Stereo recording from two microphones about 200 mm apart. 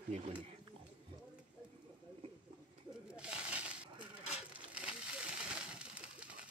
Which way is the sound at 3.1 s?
5° right (ahead or behind).